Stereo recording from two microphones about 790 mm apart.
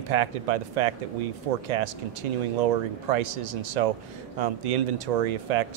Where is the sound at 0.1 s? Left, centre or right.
Right.